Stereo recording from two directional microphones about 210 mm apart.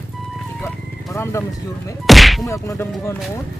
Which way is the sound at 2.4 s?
15° left (ahead or behind).